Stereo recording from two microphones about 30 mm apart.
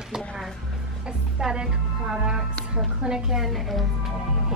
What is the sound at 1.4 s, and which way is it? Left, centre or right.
A woman's voice, right.